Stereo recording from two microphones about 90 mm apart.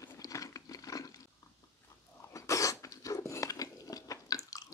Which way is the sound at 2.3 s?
35° left (ahead or behind).